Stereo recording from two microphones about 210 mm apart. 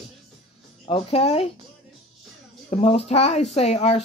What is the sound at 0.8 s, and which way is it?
Speech, 25° left (ahead or behind).